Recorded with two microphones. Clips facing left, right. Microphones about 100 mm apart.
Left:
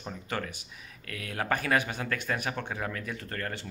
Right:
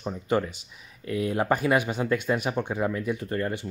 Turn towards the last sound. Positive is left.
turn(degrees=-15)  # may be behind; listen again after turning